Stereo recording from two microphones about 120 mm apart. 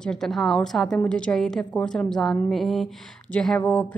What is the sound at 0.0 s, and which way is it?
A woman's voice, 5° left (ahead or behind).